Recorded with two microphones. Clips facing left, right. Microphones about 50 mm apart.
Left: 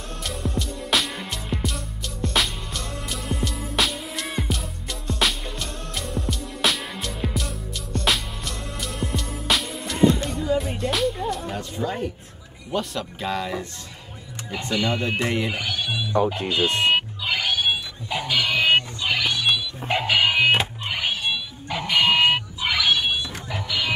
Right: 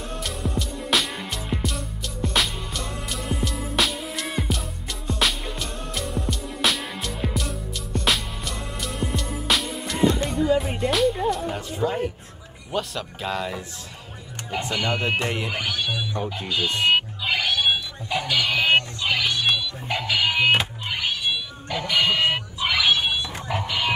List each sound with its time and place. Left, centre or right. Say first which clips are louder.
0.2 s music: left 2 dB; centre
11.4 s a sound: right 2 dB; centre
12.7 s speech: left 1 dB; centre
14.7 s speech: left 2 dB; right
15.1 s speech: left 2 dB; centre
16.1 s speech: left 6 dB; left
16.7 s music: even; centre
19.9 s music: left 3 dB; left
20.3 s music: left 1 dB; centre
21.6 s dog: left 2 dB; centre
23.5 s vehicle: right 2 dB; right